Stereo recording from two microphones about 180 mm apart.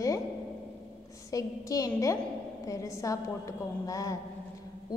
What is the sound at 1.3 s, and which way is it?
A woman's voice, 20° left (ahead or behind).